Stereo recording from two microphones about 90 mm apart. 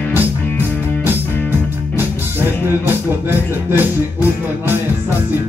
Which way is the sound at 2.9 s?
25° right (ahead or behind).